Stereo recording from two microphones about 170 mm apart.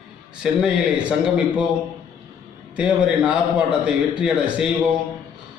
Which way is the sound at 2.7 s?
10° right (ahead or behind).